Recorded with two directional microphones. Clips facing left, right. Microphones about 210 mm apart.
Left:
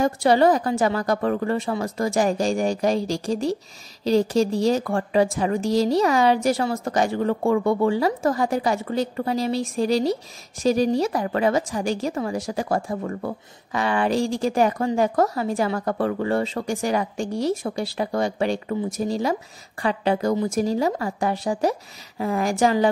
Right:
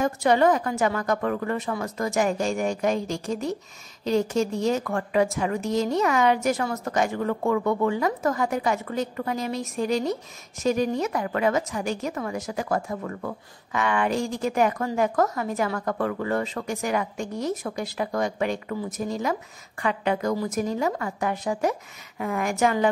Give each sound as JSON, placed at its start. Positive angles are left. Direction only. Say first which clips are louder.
{"t": 0.0, "sound": "speech", "louder": "left 3 dB", "side_deg": 35}